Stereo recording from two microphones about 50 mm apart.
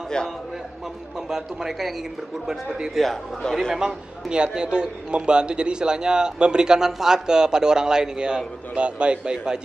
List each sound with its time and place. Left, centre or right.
1.3 s a man's voice: centre
3.8 s a man's voice: centre